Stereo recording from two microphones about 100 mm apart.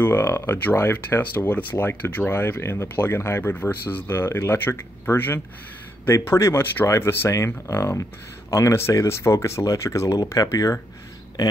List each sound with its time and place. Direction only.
0.0 s speech: 25° left (ahead or behind)